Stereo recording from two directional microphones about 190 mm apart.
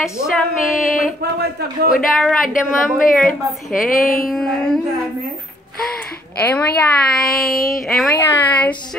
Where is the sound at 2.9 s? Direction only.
Centre (ahead or behind).